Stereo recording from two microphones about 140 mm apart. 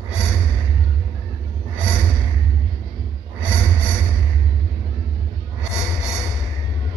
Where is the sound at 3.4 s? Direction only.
15° left (ahead or behind).